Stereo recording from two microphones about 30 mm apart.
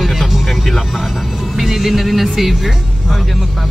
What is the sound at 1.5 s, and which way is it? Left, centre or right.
Speech, centre.